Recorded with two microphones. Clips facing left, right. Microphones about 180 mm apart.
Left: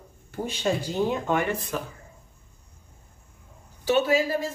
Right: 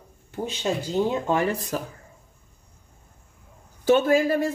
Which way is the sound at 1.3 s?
35° right (ahead or behind).